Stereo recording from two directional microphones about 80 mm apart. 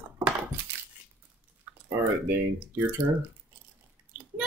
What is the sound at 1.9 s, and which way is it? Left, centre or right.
Speech, right.